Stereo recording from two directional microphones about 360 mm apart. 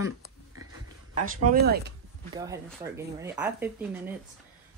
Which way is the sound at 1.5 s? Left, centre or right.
Right.